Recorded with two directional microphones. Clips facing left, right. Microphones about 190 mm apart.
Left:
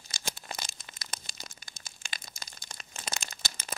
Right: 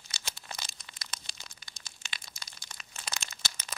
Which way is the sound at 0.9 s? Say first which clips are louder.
Left 2 dB; 45° left (ahead or behind).